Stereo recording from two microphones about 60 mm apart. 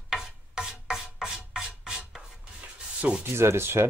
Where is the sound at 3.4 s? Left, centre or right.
Right.